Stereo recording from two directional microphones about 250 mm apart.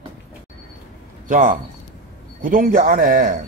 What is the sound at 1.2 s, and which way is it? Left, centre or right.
Speech, right.